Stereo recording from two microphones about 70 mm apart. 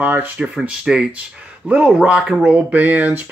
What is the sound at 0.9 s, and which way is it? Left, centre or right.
Speech, centre.